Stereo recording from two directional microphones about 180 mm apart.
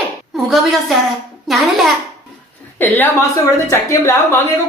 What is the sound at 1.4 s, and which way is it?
Speech, centre (ahead or behind).